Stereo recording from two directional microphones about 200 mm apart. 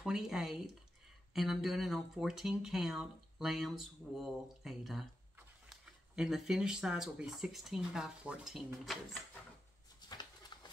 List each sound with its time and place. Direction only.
0.0 s speech: centre (ahead or behind)
9.9 s bird: 20° left (ahead or behind)